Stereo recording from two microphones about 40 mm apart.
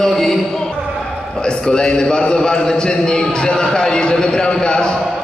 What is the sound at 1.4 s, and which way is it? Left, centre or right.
A man's voice, centre.